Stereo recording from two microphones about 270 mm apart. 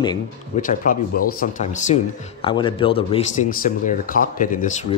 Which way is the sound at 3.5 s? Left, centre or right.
Left.